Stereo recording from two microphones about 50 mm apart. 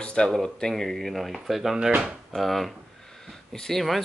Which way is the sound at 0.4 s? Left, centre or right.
Centre.